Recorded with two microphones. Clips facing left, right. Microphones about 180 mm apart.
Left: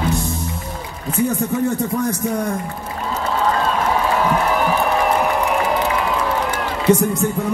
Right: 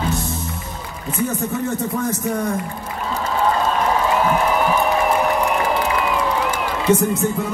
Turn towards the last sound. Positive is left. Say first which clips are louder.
# left 1 dB
turn(degrees=15)  # may be behind; listen again after turning